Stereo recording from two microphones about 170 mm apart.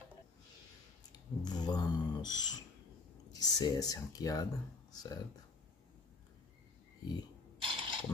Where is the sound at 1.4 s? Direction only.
25° left (ahead or behind).